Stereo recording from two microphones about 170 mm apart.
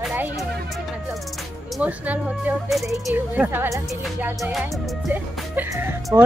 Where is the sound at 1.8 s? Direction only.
10° right (ahead or behind).